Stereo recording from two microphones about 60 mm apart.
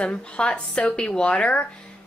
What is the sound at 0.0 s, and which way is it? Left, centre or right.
Speech, centre.